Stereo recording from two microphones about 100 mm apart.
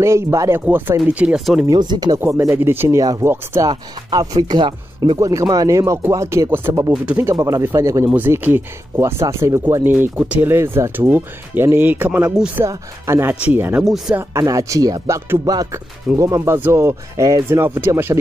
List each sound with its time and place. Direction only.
0.0 s speech: 30° right (ahead or behind)
0.7 s speech: 15° right (ahead or behind)
1.4 s speech: centre (ahead or behind)
1.7 s speech: 45° right (ahead or behind)
2.1 s speech: 25° right (ahead or behind)
3.0 s speech: 40° right (ahead or behind)
5.2 s speech: 30° right (ahead or behind)
8.1 s speech: 20° right (ahead or behind)
9.8 s speech: 20° right (ahead or behind)
13.8 s speech: centre (ahead or behind)
14.3 s speech: 35° right (ahead or behind)